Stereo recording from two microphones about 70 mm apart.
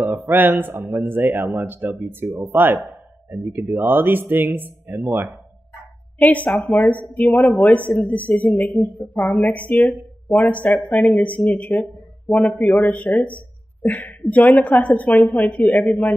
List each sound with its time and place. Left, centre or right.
0.3 s speech: right
6.1 s a woman's voice: left